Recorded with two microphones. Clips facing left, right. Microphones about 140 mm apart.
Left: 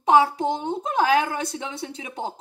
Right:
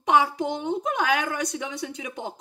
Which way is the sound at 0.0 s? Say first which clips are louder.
Left 3 dB; 30° left (ahead or behind).